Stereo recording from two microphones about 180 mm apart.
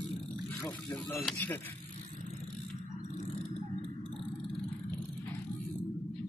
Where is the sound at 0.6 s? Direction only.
15° left (ahead or behind).